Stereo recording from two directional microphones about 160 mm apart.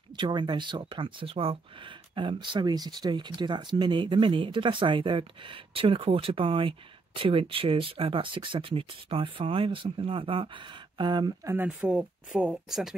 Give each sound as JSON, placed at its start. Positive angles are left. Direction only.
{"t": 0.2, "sound": "speech", "side_deg": -30}
{"t": 11.5, "sound": "speech", "side_deg": -10}